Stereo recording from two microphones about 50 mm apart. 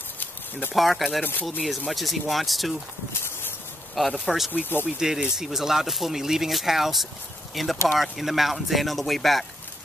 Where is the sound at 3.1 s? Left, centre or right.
Left.